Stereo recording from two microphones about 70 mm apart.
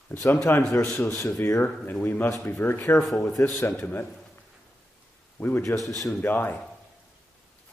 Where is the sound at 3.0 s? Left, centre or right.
Centre.